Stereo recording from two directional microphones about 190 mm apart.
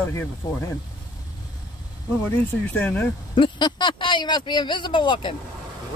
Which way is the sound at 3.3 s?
25° left (ahead or behind).